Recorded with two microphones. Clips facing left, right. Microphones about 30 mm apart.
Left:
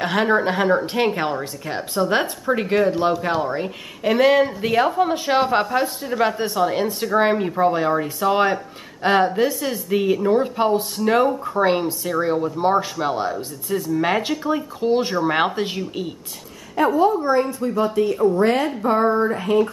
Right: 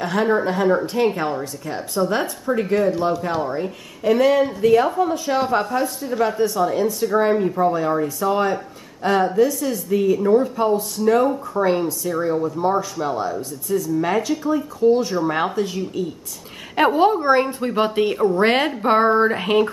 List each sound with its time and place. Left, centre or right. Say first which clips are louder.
0.0 s a woman's voice: left 1 dB; left
6.4 s a woman's voice: right 1 dB; left
16.7 s a woman's voice: right 1 dB; right
18.1 s a woman's voice: even; right
18.4 s a woman's voice: right 1 dB; right